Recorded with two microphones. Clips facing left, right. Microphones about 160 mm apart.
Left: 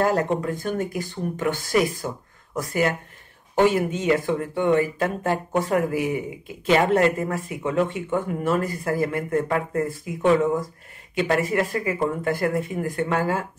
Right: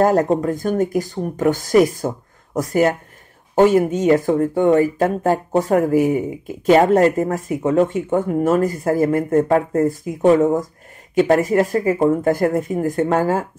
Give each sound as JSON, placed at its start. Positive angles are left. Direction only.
{"t": 0.0, "sound": "speech", "side_deg": -40}